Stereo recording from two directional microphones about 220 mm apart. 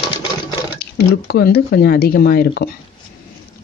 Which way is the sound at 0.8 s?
45° left (ahead or behind).